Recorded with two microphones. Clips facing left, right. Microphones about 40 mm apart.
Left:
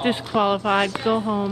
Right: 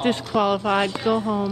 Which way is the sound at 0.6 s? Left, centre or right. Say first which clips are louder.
Left 1 dB; left.